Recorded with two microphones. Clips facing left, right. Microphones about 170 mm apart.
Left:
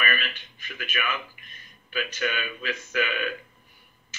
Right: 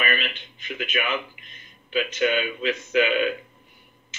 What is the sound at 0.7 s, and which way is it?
Speech, 20° right (ahead or behind).